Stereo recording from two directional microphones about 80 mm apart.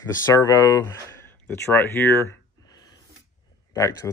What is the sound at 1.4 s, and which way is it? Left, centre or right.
Speech, left.